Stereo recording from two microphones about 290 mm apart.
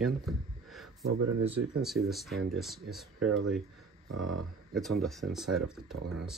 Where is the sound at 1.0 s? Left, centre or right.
Right.